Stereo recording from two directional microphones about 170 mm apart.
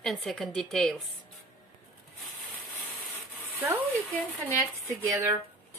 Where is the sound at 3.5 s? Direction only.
10° right (ahead or behind).